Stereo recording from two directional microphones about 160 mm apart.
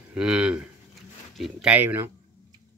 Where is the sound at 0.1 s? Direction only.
5° right (ahead or behind).